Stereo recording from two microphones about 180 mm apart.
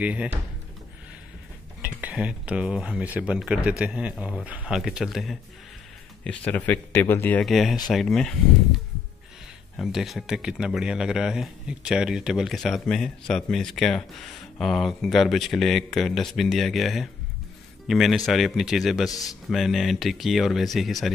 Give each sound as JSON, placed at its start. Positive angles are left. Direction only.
{"t": 0.0, "sound": "speech", "side_deg": -5}
{"t": 1.8, "sound": "a man's voice", "side_deg": -10}
{"t": 9.8, "sound": "a man's voice", "side_deg": 0}
{"t": 19.0, "sound": "speech", "side_deg": 20}
{"t": 19.5, "sound": "a man's voice", "side_deg": 0}